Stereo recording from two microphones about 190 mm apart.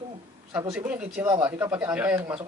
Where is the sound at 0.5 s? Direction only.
10° right (ahead or behind).